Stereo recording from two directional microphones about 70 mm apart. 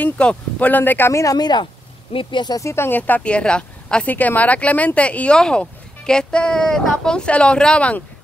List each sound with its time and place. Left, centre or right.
0.0 s speech: centre
1.1 s speech: left
1.4 s speech: left
2.6 s speech: left
3.0 s speech: centre
4.1 s speech: left